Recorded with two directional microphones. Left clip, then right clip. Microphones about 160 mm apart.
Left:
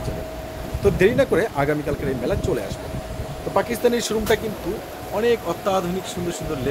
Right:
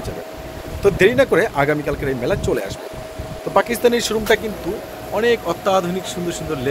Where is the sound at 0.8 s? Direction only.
Centre (ahead or behind).